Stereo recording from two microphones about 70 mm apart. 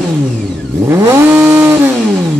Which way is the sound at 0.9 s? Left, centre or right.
Right.